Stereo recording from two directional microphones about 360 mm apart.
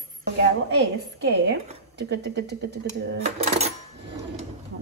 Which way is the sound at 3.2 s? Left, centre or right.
Centre.